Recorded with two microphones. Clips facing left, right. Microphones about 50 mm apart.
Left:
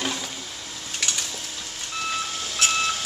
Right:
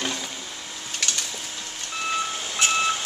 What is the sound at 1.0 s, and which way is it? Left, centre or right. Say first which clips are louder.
Vehicle: even; centre.